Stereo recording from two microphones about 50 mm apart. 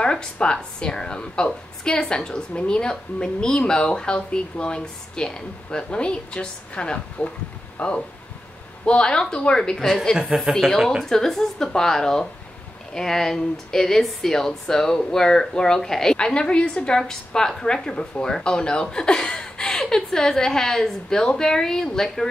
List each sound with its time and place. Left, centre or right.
0.0 s a woman's voice: centre
10.1 s speech: centre
11.1 s a woman's voice: centre